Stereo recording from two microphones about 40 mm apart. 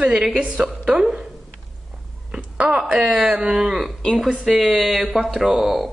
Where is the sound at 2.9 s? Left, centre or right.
Centre.